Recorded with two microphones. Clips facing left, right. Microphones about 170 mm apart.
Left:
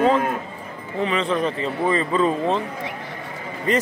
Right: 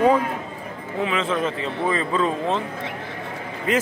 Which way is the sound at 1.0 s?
Centre (ahead or behind).